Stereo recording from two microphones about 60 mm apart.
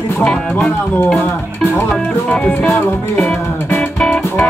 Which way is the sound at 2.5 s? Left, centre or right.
Left.